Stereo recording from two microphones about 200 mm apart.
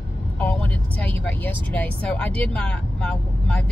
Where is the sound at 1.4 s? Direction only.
5° left (ahead or behind).